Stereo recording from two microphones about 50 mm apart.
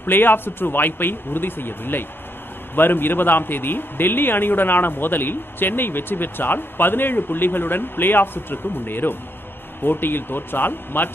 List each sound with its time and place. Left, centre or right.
0.0 s a man's voice: left